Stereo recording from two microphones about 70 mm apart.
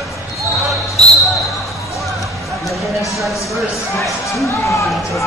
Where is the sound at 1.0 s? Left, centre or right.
Centre.